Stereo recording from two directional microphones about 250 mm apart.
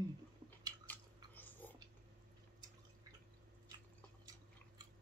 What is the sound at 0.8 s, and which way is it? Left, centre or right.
Chewing, centre.